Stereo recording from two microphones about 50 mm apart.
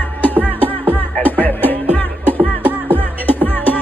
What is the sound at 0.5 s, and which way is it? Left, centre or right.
Music, left.